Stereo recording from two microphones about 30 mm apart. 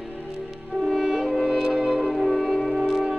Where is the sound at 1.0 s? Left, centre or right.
Centre.